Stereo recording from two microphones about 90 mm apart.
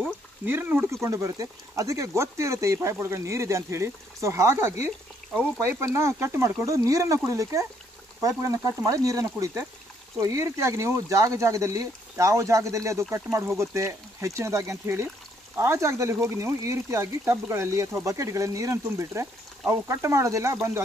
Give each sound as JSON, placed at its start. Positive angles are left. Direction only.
{"t": 0.5, "sound": "speech", "side_deg": -25}
{"t": 1.0, "sound": "speech", "side_deg": -40}